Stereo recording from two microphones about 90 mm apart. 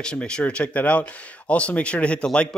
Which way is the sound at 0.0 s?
10° left (ahead or behind).